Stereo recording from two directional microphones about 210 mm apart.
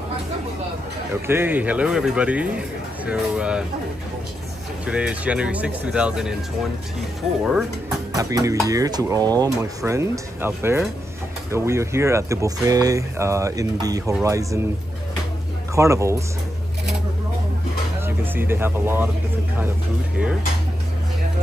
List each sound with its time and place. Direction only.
1.2 s speech: 10° right (ahead or behind)
4.8 s speech: 5° right (ahead or behind)
8.1 s speech: 15° right (ahead or behind)
15.7 s speech: 15° right (ahead or behind)
18.0 s speech: 10° right (ahead or behind)